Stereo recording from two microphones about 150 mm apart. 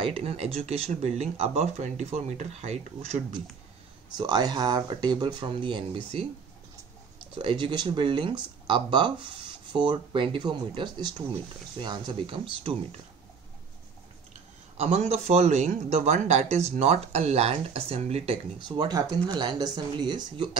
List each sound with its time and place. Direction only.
0.0 s speech: 40° right (ahead or behind)
4.2 s speech: 25° right (ahead or behind)
7.3 s speech: 35° right (ahead or behind)
14.8 s speech: 45° right (ahead or behind)
18.6 s speech: 30° right (ahead or behind)